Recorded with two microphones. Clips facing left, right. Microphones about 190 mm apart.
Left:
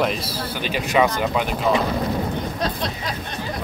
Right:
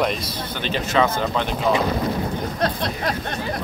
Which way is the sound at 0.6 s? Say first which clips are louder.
Left 1 dB; 10° left (ahead or behind).